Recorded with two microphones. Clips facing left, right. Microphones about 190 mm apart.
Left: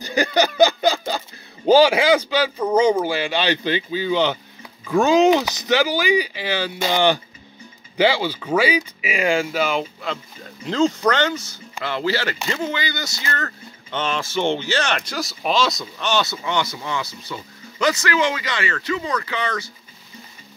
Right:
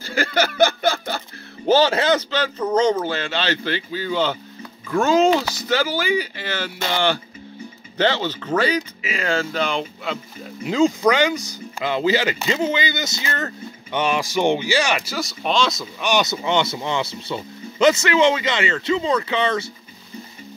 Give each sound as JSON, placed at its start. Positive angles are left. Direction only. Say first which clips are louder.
{"t": 0.0, "sound": "a sound", "louder": "left 2 dB", "side_deg": 15}
{"t": 1.7, "sound": "speech", "louder": "left 3 dB", "side_deg": 10}
{"t": 16.0, "sound": "speech", "louder": "right 2 dB", "side_deg": -15}